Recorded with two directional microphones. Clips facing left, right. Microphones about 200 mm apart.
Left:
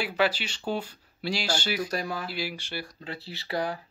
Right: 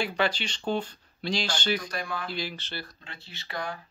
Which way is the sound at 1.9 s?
40° left (ahead or behind).